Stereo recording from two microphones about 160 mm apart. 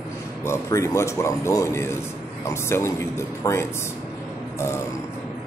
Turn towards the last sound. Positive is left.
turn(degrees=15)  # may be behind; listen again after turning